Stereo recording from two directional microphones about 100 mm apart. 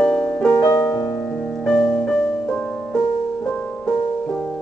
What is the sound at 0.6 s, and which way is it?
Music, 35° left (ahead or behind).